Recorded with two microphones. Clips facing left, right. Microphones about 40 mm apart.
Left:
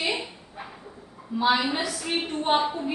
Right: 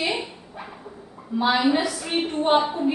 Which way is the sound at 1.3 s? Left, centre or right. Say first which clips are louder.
Right 1 dB; centre.